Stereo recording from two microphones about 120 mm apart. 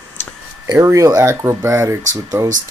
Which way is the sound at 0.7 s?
25° right (ahead or behind).